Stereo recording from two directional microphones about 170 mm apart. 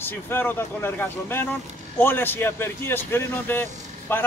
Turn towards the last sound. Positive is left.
turn(degrees=15)  # may be behind; listen again after turning